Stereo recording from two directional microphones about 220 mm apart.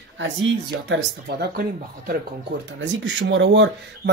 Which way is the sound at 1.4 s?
40° right (ahead or behind).